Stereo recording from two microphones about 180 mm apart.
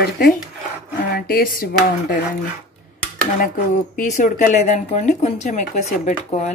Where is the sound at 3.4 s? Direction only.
45° left (ahead or behind).